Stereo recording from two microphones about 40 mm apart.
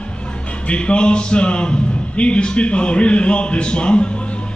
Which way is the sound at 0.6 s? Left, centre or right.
Left.